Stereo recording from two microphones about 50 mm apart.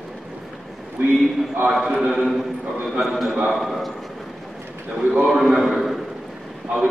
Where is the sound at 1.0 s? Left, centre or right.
Right.